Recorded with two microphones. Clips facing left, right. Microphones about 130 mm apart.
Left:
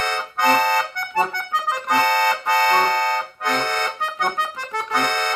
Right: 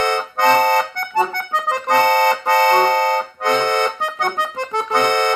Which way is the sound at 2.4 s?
25° right (ahead or behind).